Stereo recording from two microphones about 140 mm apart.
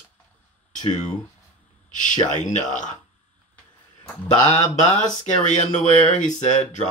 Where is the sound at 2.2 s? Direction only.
65° left (ahead or behind).